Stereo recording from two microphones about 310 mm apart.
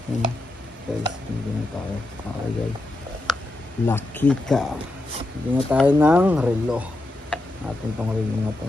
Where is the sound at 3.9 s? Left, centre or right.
Centre.